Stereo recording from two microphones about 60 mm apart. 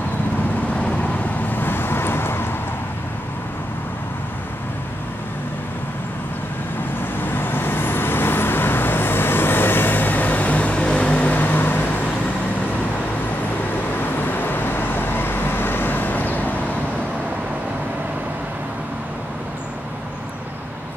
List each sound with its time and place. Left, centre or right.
0.7 s vehicle: centre
1.5 s vehicle: left
7.2 s vehicle: left
14.0 s vehicle: left